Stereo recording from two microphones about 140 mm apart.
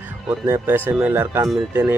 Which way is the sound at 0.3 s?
15° right (ahead or behind).